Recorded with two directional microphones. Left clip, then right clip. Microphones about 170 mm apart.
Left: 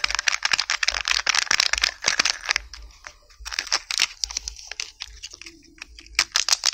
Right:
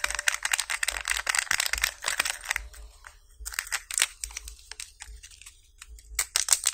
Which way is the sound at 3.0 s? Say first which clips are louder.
Left 7 dB; 20° left (ahead or behind).